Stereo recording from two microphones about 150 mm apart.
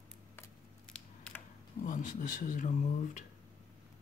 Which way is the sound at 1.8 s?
60° left (ahead or behind).